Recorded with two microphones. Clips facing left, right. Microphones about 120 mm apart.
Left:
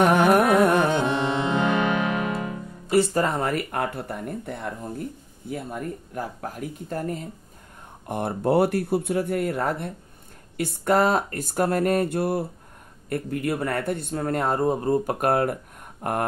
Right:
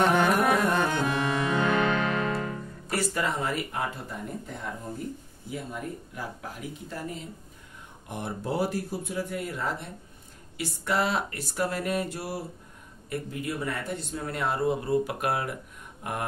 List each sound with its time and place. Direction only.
0.6 s music: 70° left (ahead or behind)
0.8 s music: 25° left (ahead or behind)
3.1 s speech: 45° left (ahead or behind)